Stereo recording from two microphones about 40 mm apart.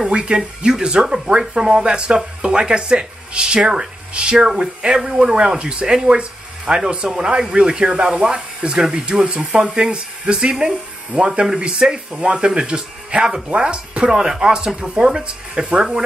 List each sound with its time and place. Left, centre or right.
0.1 s speech: right
14.1 s speech: centre